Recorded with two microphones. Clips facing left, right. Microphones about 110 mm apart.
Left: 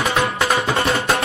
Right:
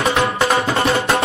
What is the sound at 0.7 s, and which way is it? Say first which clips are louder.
Music: right 2 dB; 30° right (ahead or behind).